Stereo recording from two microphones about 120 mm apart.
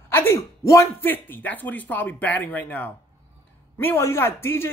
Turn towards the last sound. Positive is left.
turn(degrees=20)  # may be behind; listen again after turning